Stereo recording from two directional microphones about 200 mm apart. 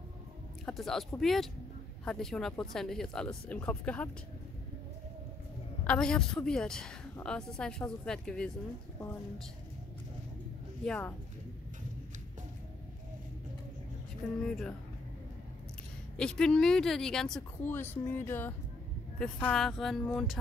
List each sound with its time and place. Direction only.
0.7 s a woman's voice: centre (ahead or behind)
5.9 s a woman's voice: 5° left (ahead or behind)
10.8 s a woman's voice: 5° left (ahead or behind)
14.2 s a woman's voice: 5° left (ahead or behind)
16.2 s a woman's voice: 5° left (ahead or behind)